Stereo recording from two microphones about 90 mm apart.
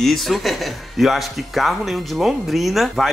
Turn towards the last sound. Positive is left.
turn(degrees=0)  # may be behind; listen again after turning